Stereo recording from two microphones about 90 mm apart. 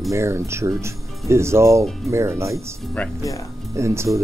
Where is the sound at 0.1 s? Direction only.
30° right (ahead or behind).